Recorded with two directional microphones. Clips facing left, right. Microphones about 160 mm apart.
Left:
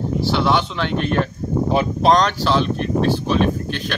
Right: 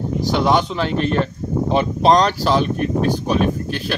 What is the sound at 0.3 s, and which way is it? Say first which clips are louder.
Speech: right 3 dB; 45° right (ahead or behind).